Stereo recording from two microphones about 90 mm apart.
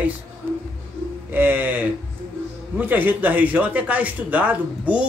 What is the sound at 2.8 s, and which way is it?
Speech, 20° right (ahead or behind).